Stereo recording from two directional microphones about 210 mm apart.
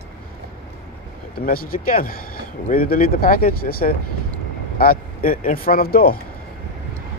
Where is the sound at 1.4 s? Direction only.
45° left (ahead or behind).